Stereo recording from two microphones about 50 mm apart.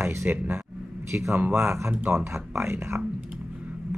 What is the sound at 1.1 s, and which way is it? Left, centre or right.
Speech, right.